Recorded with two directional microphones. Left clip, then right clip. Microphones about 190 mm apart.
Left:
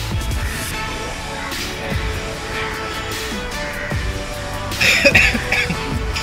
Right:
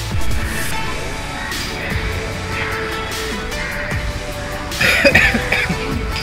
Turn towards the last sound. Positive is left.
turn(degrees=-5)  # may be behind; listen again after turning